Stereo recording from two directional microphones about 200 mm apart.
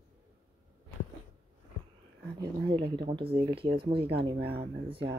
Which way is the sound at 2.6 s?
25° right (ahead or behind).